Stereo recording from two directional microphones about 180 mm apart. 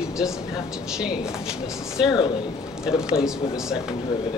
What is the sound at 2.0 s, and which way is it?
Speech, 25° left (ahead or behind).